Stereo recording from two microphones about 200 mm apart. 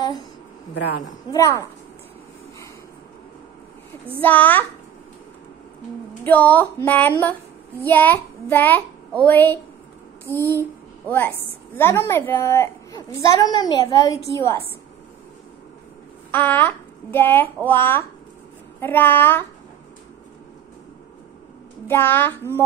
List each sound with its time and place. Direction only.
0.7 s a woman's voice: 55° left (ahead or behind)
1.3 s a woman's voice: 15° left (ahead or behind)
4.2 s a woman's voice: 10° left (ahead or behind)
6.2 s a woman's voice: 10° left (ahead or behind)
16.3 s a child's voice: 10° left (ahead or behind)
21.8 s a woman's voice: 10° left (ahead or behind)